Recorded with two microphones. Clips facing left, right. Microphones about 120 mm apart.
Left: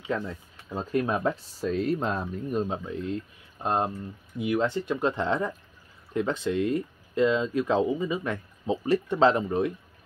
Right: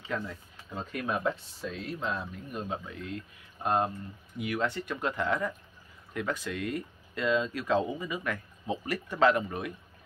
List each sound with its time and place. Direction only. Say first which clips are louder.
0.7 s speech: left 6 dB; 30° left (ahead or behind)